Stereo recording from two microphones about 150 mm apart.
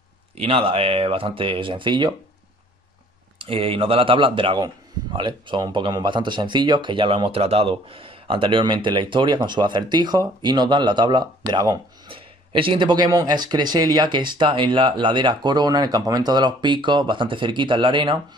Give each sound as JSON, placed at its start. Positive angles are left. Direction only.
{"t": 0.4, "sound": "speech", "side_deg": -40}
{"t": 3.3, "sound": "speech", "side_deg": -40}